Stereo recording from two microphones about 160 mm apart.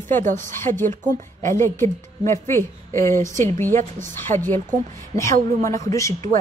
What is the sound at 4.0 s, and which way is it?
Speech, 15° left (ahead or behind).